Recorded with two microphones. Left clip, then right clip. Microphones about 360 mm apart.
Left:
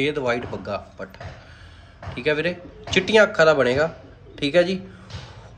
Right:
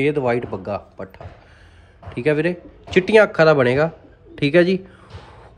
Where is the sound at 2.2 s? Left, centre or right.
Centre.